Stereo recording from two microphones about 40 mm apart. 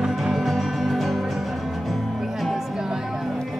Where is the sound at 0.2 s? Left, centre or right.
Centre.